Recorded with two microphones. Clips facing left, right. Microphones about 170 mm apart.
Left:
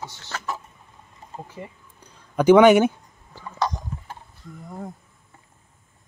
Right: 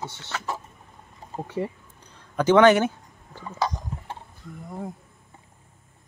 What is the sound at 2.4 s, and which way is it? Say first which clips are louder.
Speech: left 3 dB; 10° left (ahead or behind).